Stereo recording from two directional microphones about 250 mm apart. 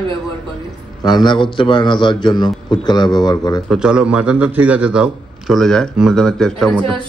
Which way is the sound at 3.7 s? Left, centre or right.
Centre.